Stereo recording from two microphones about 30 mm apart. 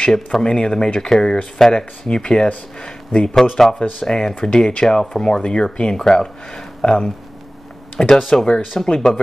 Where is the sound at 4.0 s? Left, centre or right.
Left.